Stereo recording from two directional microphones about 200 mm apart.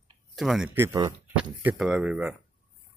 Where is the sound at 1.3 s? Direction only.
5° right (ahead or behind).